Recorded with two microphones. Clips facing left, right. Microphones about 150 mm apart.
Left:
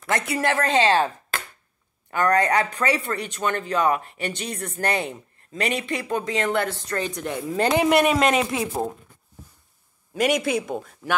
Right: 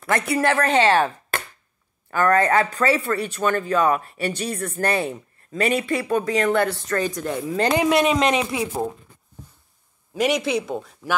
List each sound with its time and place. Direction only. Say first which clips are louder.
0.3 s a man's voice: right 3 dB; 20° left (ahead or behind)
7.5 s speech: even; 10° left (ahead or behind)
10.1 s a man's voice: right 1 dB; 50° left (ahead or behind)